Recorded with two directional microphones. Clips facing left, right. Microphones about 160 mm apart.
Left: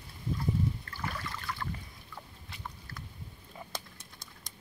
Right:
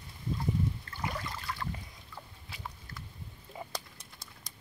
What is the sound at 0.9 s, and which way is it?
Trickle, 20° right (ahead or behind).